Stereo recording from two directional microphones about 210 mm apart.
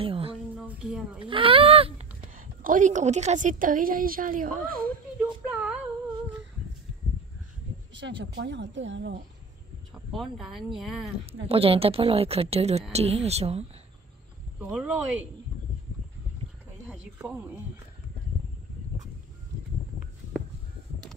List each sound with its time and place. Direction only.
0.0 s a woman's voice: 25° right (ahead or behind)
0.6 s speech: 5° right (ahead or behind)
1.2 s speech: 25° right (ahead or behind)
2.2 s a woman's voice: 40° right (ahead or behind)
5.2 s a sound: 5° right (ahead or behind)
8.2 s speech: 60° right (ahead or behind)
10.1 s speech: centre (ahead or behind)
11.4 s a woman's voice: 25° right (ahead or behind)
14.6 s speech: 5° right (ahead or behind)
16.8 s snake: 5° right (ahead or behind)